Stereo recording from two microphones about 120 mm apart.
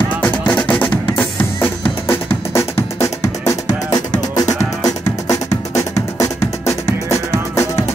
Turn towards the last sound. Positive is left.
turn(degrees=25)  # may be behind; listen again after turning